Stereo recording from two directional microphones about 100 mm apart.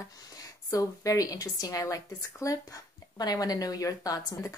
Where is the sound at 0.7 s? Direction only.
35° left (ahead or behind).